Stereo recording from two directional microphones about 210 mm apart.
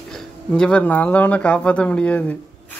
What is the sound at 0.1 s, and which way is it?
Speech, 5° left (ahead or behind).